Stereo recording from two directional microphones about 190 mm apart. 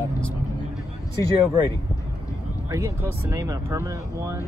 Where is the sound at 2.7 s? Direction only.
15° right (ahead or behind).